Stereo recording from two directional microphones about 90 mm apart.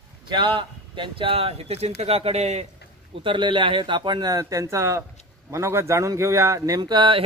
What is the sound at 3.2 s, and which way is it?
A man's voice, 70° right (ahead or behind).